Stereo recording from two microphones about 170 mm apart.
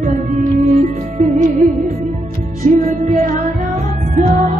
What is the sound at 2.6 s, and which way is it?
Music, 45° right (ahead or behind).